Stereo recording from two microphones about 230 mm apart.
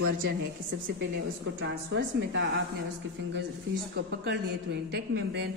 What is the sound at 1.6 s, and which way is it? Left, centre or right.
Speech, right.